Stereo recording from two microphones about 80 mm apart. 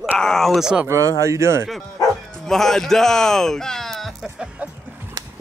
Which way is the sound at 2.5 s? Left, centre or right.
Centre.